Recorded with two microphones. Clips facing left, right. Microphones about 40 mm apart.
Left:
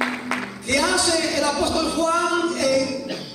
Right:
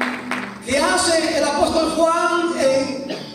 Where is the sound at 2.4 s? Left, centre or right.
Centre.